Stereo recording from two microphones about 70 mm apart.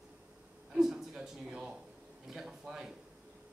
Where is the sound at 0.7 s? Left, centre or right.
Centre.